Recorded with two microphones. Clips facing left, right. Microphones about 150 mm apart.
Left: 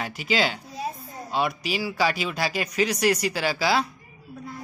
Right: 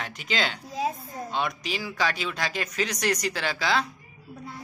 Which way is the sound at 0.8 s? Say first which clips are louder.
Right 4 dB; 90° right.